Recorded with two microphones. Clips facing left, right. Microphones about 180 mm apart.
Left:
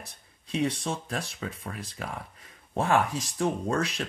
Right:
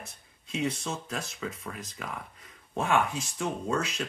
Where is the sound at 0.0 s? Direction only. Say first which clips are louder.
Right 1 dB; 30° left (ahead or behind).